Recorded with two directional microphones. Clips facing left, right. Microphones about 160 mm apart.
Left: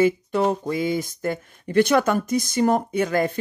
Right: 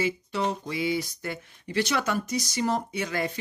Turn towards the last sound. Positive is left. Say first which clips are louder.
# left 8 dB
turn(degrees=50)  # may be behind; listen again after turning